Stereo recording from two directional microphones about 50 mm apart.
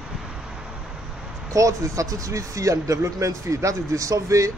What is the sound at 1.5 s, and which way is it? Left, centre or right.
Speech, right.